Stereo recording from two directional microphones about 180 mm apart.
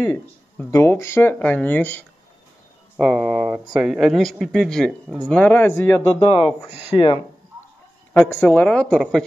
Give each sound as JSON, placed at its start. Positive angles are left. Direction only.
{"t": 0.0, "sound": "speech", "side_deg": 15}
{"t": 3.0, "sound": "speech", "side_deg": 0}
{"t": 6.1, "sound": "speech", "side_deg": 30}
{"t": 8.1, "sound": "speech", "side_deg": 10}